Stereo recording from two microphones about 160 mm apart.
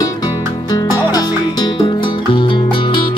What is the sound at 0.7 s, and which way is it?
Music, 25° left (ahead or behind).